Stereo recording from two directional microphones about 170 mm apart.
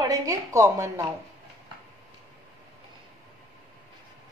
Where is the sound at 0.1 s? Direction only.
20° right (ahead or behind).